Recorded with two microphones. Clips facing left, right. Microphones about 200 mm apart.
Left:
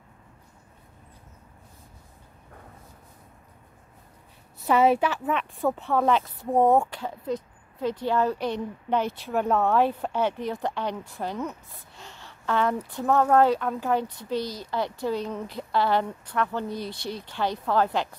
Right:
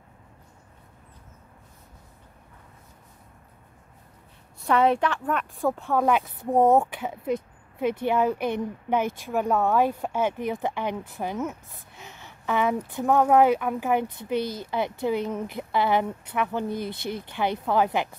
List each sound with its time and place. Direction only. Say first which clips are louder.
4.6 s a woman's voice: left 1 dB; 5° left (ahead or behind)
5.9 s a woman's voice: even; 10° right (ahead or behind)
14.0 s speech: right 2 dB; 55° right (ahead or behind)
14.7 s a woman's voice: right 1 dB; 20° right (ahead or behind)
16.6 s speech: right 3 dB; 55° right (ahead or behind)
17.6 s a woman's voice: even; 15° right (ahead or behind)